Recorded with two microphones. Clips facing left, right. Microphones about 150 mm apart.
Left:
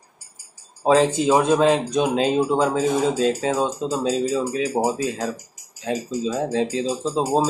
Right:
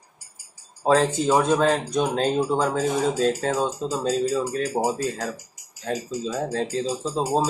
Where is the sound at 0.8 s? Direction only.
5° left (ahead or behind).